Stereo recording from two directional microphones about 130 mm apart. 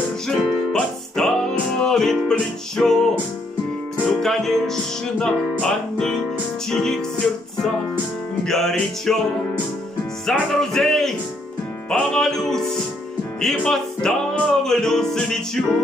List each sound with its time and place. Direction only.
0.3 s music: 5° left (ahead or behind)
4.1 s music: centre (ahead or behind)
8.5 s music: 5° left (ahead or behind)
10.2 s music: 5° left (ahead or behind)